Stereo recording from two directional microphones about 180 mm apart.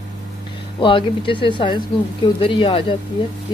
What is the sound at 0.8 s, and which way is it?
Speech, 25° left (ahead or behind).